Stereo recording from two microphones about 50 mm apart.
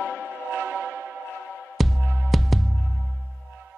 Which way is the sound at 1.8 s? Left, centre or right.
Centre.